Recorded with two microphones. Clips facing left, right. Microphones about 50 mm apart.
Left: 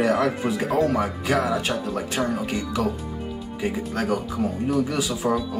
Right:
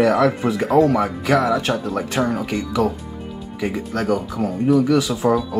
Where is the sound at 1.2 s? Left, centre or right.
Right.